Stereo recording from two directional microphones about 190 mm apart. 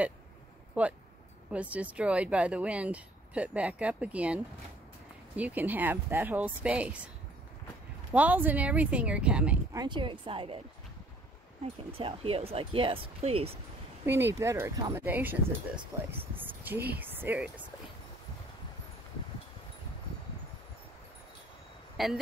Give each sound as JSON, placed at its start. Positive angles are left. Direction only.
{"t": 0.8, "sound": "speech", "side_deg": -5}
{"t": 8.1, "sound": "speech", "side_deg": -10}
{"t": 9.7, "sound": "speech", "side_deg": -20}
{"t": 12.0, "sound": "speech", "side_deg": -30}
{"t": 14.0, "sound": "speech", "side_deg": -15}
{"t": 21.9, "sound": "speech", "side_deg": 0}